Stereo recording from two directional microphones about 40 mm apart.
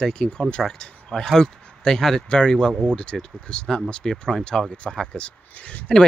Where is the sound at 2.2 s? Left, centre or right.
Left.